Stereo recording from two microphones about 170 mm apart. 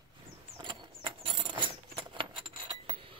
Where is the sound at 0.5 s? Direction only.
30° right (ahead or behind).